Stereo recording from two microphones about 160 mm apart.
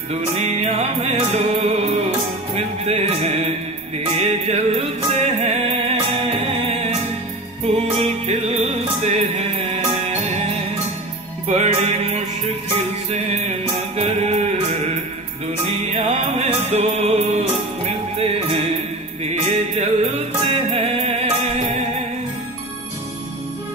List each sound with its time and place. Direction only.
0.1 s music: 45° right (ahead or behind)
8.0 s music: 40° right (ahead or behind)
11.5 s music: 40° right (ahead or behind)
15.6 s music: 40° right (ahead or behind)
19.8 s music: 40° right (ahead or behind)